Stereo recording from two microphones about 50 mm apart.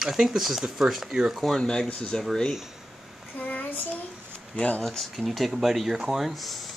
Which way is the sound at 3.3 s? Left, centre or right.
Left.